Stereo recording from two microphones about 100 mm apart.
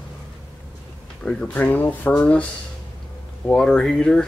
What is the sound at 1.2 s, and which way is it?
Speech, 15° left (ahead or behind).